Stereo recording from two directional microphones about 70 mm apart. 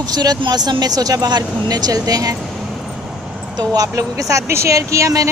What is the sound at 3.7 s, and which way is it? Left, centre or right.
Speech, right.